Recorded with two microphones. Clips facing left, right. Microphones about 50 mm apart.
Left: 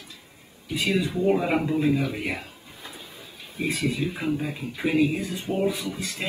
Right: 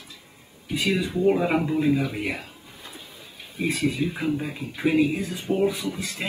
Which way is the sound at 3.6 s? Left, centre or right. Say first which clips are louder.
Right 2 dB; centre.